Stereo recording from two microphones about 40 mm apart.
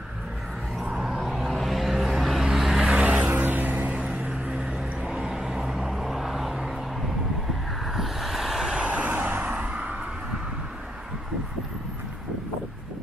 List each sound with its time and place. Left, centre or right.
1.0 s vehicle: centre
2.8 s vehicle: right
3.4 s vehicle: right
4.3 s vehicle: right
5.0 s vehicle: centre
5.9 s vehicle: centre
7.8 s vehicle: centre
8.7 s vehicle: right